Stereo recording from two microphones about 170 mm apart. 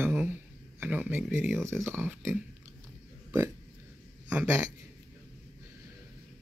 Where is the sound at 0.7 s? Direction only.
10° right (ahead or behind).